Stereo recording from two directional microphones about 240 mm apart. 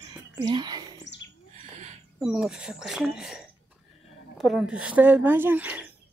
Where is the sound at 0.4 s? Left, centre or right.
Centre.